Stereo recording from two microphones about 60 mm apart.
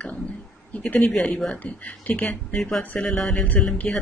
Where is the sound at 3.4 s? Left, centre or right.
Left.